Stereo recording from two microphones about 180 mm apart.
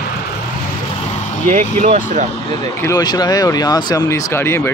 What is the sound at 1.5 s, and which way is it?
Speech, 40° right (ahead or behind).